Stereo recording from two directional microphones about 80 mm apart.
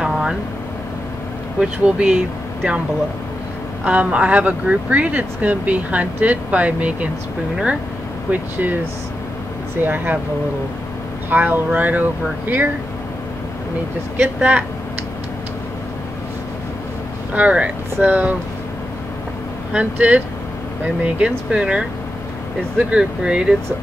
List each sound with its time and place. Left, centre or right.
0.0 s a sound: centre
1.6 s speech: centre
3.8 s speech: centre
8.3 s speech: right
9.8 s speech: right
11.2 s speech: right
14.2 s speech: right
17.3 s speech: centre
19.7 s speech: centre